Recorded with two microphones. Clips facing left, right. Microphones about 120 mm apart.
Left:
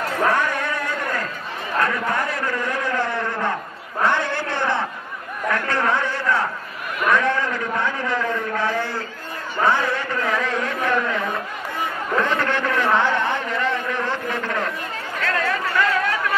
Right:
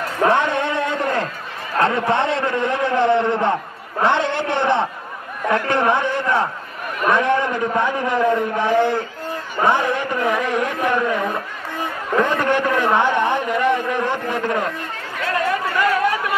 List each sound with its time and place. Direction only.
0.3 s a sound: 25° right (ahead or behind)
1.8 s a man's voice: 25° right (ahead or behind)
12.2 s a man's voice: 15° right (ahead or behind)
15.2 s chatter: 15° right (ahead or behind)